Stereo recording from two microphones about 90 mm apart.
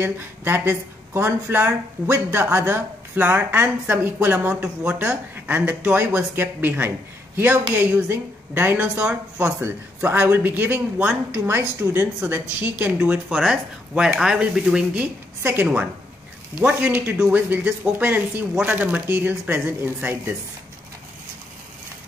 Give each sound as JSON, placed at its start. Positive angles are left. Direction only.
{"t": 0.0, "sound": "speech", "side_deg": -25}
{"t": 13.3, "sound": "speech", "side_deg": -5}
{"t": 15.4, "sound": "speech", "side_deg": -20}